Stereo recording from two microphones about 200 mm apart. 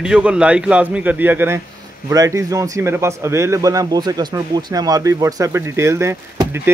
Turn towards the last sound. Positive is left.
turn(degrees=-15)  # may be behind; listen again after turning